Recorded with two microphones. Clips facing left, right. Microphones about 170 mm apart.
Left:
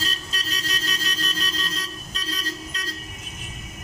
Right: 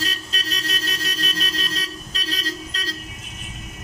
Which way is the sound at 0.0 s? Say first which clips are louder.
Right 3 dB; 65° right (ahead or behind).